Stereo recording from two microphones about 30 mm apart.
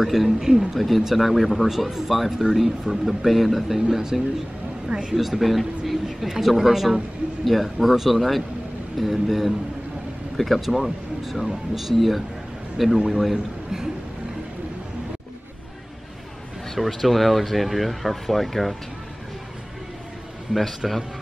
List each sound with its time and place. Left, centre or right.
0.0 s speech: centre
0.4 s speech: centre
0.7 s speech: centre
1.9 s speech: centre
2.4 s speech: centre
2.8 s speech: centre
3.9 s speech: centre
4.8 s speech: right
5.1 s speech: centre
7.4 s speech: centre
16.7 s speech: centre
20.8 s speech: centre